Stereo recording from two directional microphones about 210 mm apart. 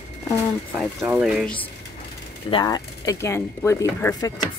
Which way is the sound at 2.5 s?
20° left (ahead or behind).